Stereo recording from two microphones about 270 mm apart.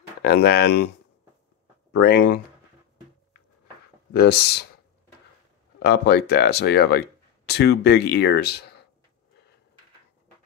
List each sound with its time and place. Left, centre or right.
0.2 s speech: left
2.0 s speech: left
4.2 s speech: left
5.8 s speech: left